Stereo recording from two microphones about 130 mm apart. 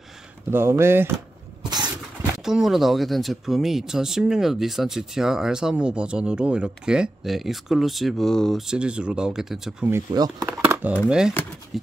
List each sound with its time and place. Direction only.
0.5 s speech: 20° right (ahead or behind)
2.4 s speech: 5° right (ahead or behind)
10.4 s speech: 15° right (ahead or behind)
11.7 s wild animals: centre (ahead or behind)